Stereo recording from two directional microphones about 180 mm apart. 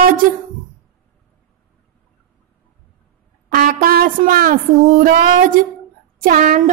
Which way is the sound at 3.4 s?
55° right (ahead or behind).